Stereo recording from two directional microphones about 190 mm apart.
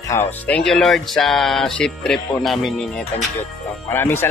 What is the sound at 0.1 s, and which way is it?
Speech, 10° left (ahead or behind).